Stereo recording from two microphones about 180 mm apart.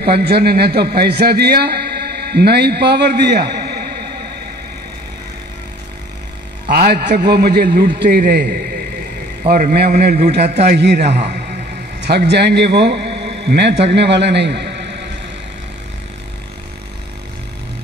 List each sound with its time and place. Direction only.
0.0 s a man's voice: 60° right (ahead or behind)
6.7 s a man's voice: 60° right (ahead or behind)
10.8 s a man's voice: 70° right (ahead or behind)